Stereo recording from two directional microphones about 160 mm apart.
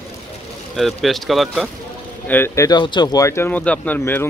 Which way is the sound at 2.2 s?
15° left (ahead or behind).